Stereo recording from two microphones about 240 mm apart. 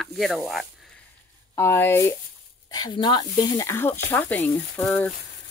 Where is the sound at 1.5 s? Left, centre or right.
Centre.